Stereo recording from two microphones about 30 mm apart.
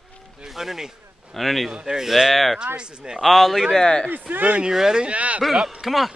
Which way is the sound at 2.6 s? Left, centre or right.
Right.